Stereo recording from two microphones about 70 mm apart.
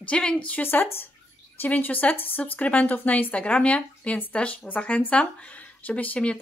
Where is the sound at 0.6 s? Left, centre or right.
Left.